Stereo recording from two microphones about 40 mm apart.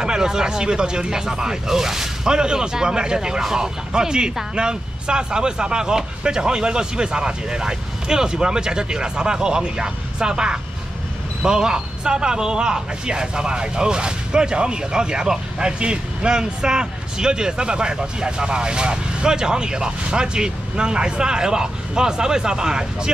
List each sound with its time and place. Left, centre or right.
0.0 s speech: centre